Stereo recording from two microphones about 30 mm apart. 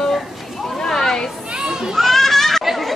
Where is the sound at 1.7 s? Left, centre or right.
Centre.